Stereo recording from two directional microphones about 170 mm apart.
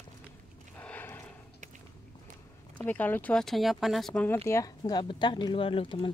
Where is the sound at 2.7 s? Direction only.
10° left (ahead or behind).